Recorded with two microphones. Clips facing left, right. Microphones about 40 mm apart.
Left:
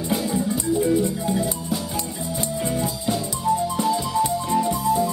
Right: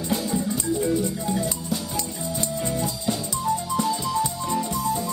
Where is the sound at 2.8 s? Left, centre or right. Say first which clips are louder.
Left 2 dB; centre.